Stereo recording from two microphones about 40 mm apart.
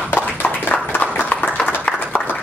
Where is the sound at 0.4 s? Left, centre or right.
Left.